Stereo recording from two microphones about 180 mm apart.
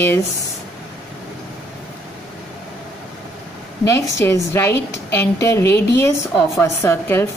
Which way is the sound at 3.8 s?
15° left (ahead or behind).